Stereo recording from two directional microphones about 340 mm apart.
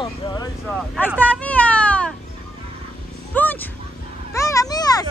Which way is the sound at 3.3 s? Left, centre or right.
Centre.